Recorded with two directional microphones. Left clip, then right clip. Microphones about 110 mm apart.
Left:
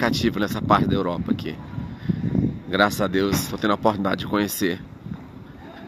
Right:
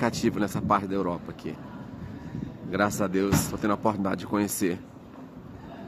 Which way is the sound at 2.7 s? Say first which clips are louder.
Left 5 dB; 35° left (ahead or behind).